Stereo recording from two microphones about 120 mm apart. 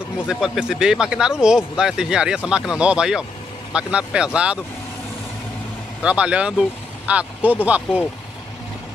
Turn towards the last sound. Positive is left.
turn(degrees=-10)  # may be behind; listen again after turning